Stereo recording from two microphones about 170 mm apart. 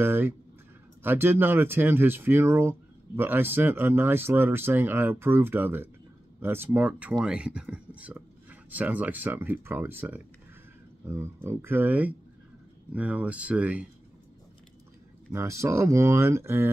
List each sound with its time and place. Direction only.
0.0 s speech: 10° right (ahead or behind)
15.3 s speech: 15° right (ahead or behind)